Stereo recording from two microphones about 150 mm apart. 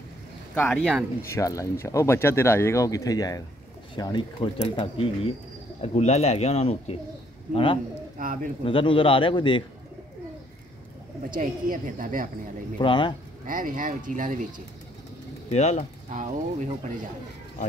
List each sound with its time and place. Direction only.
0.6 s speech: 10° left (ahead or behind)
1.3 s speech: 20° left (ahead or behind)
8.2 s speech: 65° right (ahead or behind)
8.6 s speech: 35° left (ahead or behind)
11.3 s a woman's voice: 60° right (ahead or behind)
12.7 s speech: 35° left (ahead or behind)
13.5 s a woman's voice: 65° right (ahead or behind)
15.5 s speech: 50° left (ahead or behind)
16.1 s a woman's voice: 55° right (ahead or behind)